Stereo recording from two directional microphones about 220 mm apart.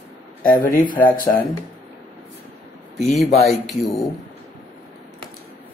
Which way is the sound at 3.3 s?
Centre (ahead or behind).